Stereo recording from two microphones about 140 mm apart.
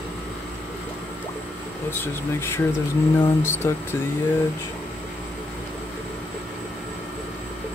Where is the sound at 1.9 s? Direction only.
15° left (ahead or behind).